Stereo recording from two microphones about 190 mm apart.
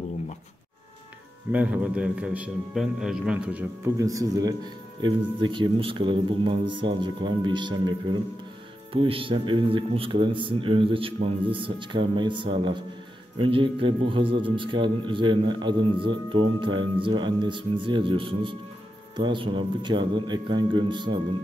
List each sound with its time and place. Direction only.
1.5 s a man's voice: 5° right (ahead or behind)
3.9 s a man's voice: 15° right (ahead or behind)